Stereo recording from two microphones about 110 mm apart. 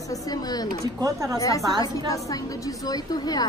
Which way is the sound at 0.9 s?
30° right (ahead or behind).